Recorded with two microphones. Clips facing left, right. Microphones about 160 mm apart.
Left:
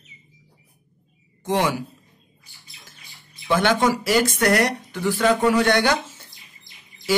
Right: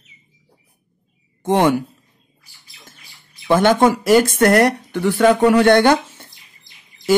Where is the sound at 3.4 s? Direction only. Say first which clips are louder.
Right 6 dB; 50° right (ahead or behind).